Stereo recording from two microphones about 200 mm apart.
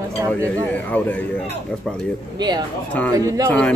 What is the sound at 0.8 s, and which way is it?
Speech, 5° left (ahead or behind).